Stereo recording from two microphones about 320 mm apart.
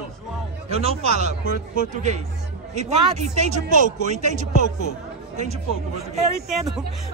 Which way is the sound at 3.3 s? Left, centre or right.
Right.